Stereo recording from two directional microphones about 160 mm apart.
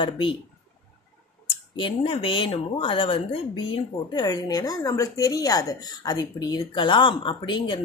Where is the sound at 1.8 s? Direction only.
35° left (ahead or behind).